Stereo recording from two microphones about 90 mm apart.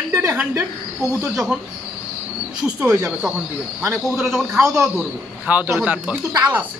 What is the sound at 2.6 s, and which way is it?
Speech, 10° right (ahead or behind).